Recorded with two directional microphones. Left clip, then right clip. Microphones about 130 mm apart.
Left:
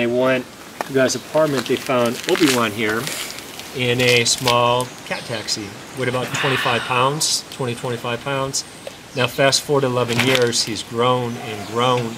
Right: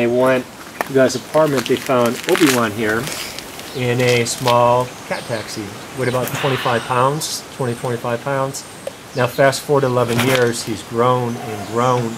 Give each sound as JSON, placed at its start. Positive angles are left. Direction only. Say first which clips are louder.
{"t": 0.0, "sound": "speech", "louder": "right 3 dB", "side_deg": 20}
{"t": 2.2, "sound": "speech", "louder": "right 2 dB", "side_deg": 0}
{"t": 2.6, "sound": "speech", "louder": "right 2 dB", "side_deg": 15}
{"t": 10.0, "sound": "speech", "louder": "right 1 dB", "side_deg": 10}